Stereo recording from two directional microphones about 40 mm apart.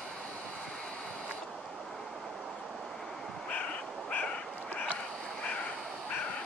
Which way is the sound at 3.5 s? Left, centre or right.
Left.